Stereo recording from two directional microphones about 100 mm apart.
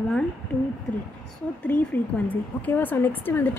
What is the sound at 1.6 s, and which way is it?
A woman's voice, 15° left (ahead or behind).